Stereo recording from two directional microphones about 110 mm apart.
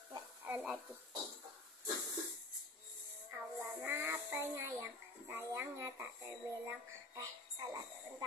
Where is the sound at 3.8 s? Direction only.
20° right (ahead or behind).